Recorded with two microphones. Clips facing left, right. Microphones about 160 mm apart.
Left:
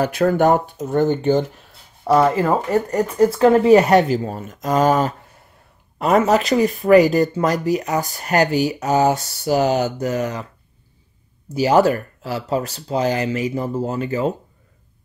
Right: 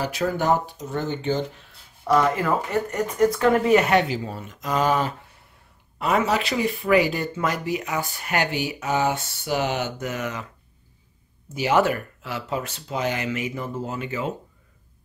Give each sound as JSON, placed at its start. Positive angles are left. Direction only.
{"t": 0.0, "sound": "speech", "side_deg": 55}
{"t": 2.0, "sound": "speech", "side_deg": 30}
{"t": 11.4, "sound": "speech", "side_deg": 35}